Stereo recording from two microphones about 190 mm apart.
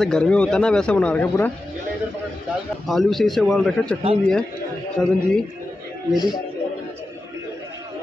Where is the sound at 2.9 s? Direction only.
Centre (ahead or behind).